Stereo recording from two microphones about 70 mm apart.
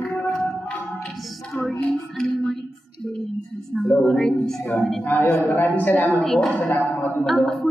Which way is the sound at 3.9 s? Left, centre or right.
Centre.